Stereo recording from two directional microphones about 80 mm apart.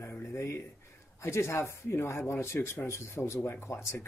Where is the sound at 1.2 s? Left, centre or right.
Left.